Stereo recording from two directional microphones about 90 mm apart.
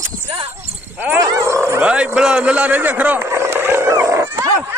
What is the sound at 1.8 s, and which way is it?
A man's voice, 15° right (ahead or behind).